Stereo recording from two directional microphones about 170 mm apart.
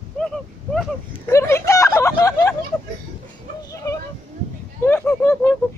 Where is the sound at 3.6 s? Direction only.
20° left (ahead or behind).